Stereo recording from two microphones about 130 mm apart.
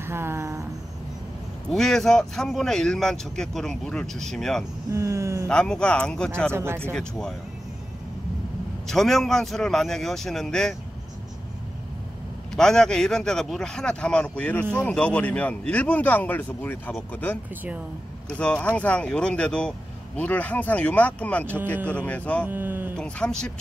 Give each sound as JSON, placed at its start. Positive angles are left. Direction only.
{"t": 0.0, "sound": "a sound", "side_deg": -20}
{"t": 1.7, "sound": "speech", "side_deg": 5}
{"t": 4.9, "sound": "speech", "side_deg": -25}
{"t": 5.5, "sound": "speech", "side_deg": 5}
{"t": 6.5, "sound": "speech", "side_deg": -20}
{"t": 6.8, "sound": "speech", "side_deg": 5}
{"t": 8.8, "sound": "speech", "side_deg": 0}
{"t": 12.5, "sound": "speech", "side_deg": 5}
{"t": 22.5, "sound": "speech", "side_deg": -15}
{"t": 22.9, "sound": "speech", "side_deg": 10}